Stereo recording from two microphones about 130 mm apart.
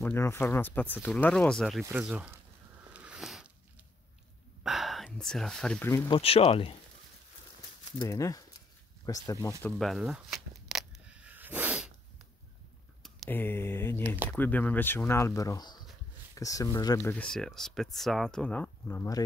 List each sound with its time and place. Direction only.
0.0 s speech: 20° left (ahead or behind); by 1.9 s centre (ahead or behind)
1.9 s speech: 10° right (ahead or behind)
2.9 s a sound: 10° right (ahead or behind)
4.6 s speech: centre (ahead or behind)
6.0 s speech: 45° left (ahead or behind)
8.1 s speech: 25° left (ahead or behind)
9.6 s a sound: 5° left (ahead or behind); by 11.9 s 10° right (ahead or behind)
13.3 s speech: 15° left (ahead or behind)
14.0 s speech: 15° right (ahead or behind)
14.3 s speech: 10° left (ahead or behind)
17.1 s speech: 5° left (ahead or behind); by 19.2 s 25° left (ahead or behind)